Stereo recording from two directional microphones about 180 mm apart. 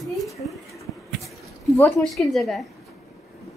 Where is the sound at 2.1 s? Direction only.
Centre (ahead or behind).